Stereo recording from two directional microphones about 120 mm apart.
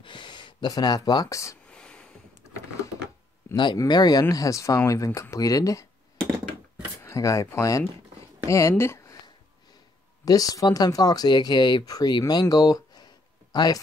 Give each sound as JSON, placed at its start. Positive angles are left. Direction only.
{"t": 0.0, "sound": "speech", "side_deg": 40}
{"t": 1.7, "sound": "a sound", "side_deg": 10}
{"t": 3.5, "sound": "speech", "side_deg": 35}
{"t": 7.0, "sound": "a woman's voice", "side_deg": 25}
{"t": 10.2, "sound": "speech", "side_deg": 30}